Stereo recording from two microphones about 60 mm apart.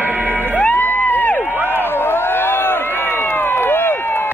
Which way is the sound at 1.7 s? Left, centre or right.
Left.